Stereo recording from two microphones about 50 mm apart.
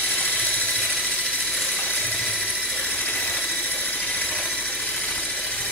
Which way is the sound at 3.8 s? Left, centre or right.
Left.